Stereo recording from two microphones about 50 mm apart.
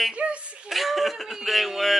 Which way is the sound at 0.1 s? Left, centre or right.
Right.